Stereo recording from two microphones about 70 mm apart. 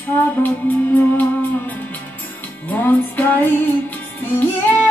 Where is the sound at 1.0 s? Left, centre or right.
Left.